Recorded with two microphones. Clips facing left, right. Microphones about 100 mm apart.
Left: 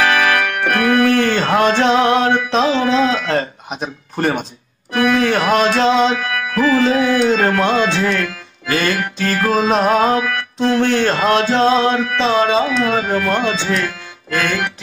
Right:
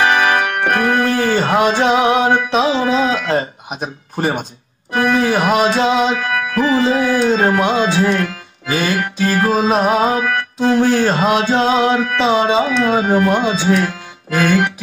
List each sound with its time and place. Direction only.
0.0 s organ: 25° right (ahead or behind)
1.2 s music: 10° right (ahead or behind)
3.3 s speech: 5° right (ahead or behind)
5.1 s music: 10° right (ahead or behind)
6.5 s tabla: 20° right (ahead or behind)
7.0 s speech: 35° right (ahead or behind)
7.3 s music: 20° right (ahead or behind)
8.0 s tabla: 30° right (ahead or behind)
8.6 s music: 10° right (ahead or behind)
10.6 s speech: 5° right (ahead or behind)
11.1 s music: 15° right (ahead or behind)